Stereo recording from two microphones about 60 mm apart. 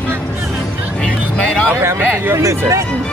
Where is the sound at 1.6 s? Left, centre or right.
Right.